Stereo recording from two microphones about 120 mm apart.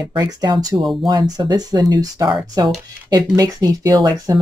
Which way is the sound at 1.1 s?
35° right (ahead or behind).